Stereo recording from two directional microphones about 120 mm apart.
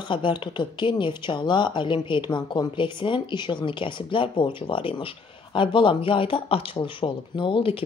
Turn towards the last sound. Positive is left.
turn(degrees=50)  # may be behind; listen again after turning